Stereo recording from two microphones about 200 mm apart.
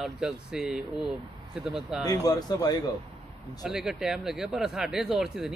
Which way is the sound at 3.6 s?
Centre (ahead or behind).